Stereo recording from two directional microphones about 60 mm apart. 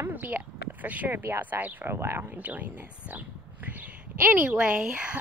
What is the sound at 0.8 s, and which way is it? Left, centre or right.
A woman's voice, right.